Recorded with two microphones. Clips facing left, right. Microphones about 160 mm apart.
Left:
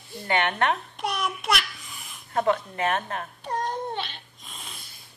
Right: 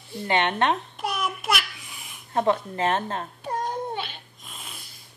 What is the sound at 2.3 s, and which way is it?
Speech, 30° right (ahead or behind).